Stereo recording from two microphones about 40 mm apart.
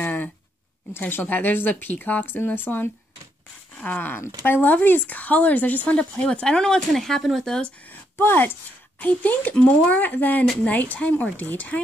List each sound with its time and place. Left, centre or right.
0.0 s a sound: left
1.2 s speech: left
2.2 s speech: left
3.8 s speech: left
4.1 s speech: left
6.2 s speech: left
6.9 s speech: centre
8.2 s speech: left
9.0 s speech: left